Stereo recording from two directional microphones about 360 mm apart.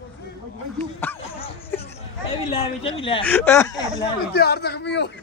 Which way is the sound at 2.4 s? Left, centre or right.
Centre.